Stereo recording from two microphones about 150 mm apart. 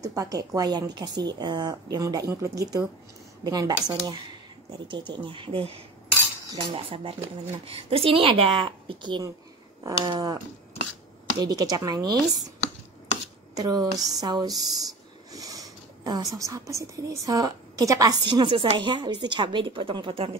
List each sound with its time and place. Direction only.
0.0 s speech: 25° right (ahead or behind)
13.6 s speech: 25° right (ahead or behind)